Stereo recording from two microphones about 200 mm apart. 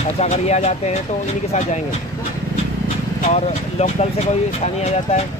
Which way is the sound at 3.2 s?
35° left (ahead or behind).